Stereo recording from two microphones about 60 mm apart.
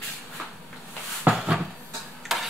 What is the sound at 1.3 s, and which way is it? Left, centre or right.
Cupboard open or close, centre.